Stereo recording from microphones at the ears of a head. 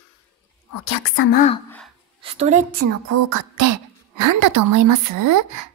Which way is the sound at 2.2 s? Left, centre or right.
Right.